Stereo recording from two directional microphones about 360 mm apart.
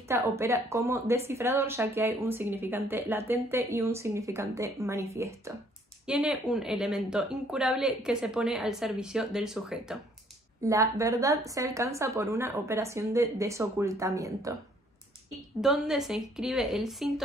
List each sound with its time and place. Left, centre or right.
0.1 s a woman's voice: centre
15.6 s a woman's voice: centre